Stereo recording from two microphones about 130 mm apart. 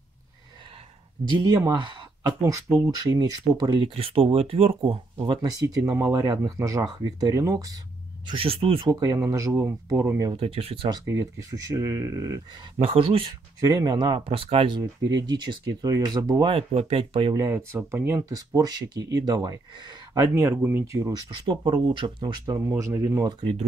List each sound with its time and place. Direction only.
1.4 s speech: 25° right (ahead or behind)
3.8 s speech: 45° right (ahead or behind); by 7.8 s 30° right (ahead or behind)
8.3 s speech: 45° right (ahead or behind)
8.9 s speech: 25° right (ahead or behind)
10.3 s speech: 45° right (ahead or behind)
10.9 s speech: 25° right (ahead or behind)
12.7 s speech: 45° right (ahead or behind)
13.6 s speech: 30° right (ahead or behind)
14.8 s speech: 35° right (ahead or behind)
16.7 s speech: 45° right (ahead or behind)
17.3 s speech: 25° right (ahead or behind)
20.3 s speech: 20° right (ahead or behind)
21.5 s speech: 40° right (ahead or behind)